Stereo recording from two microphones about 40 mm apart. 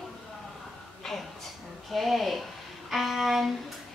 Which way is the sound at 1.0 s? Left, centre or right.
Centre.